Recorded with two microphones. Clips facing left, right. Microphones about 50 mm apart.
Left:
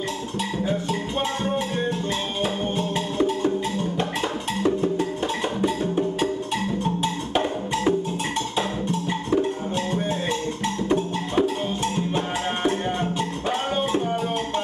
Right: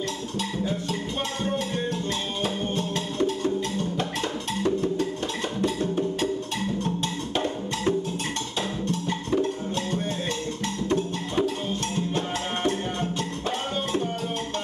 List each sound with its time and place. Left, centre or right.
3.2 s music: left
4.6 s music: centre
9.3 s music: centre
12.6 s music: centre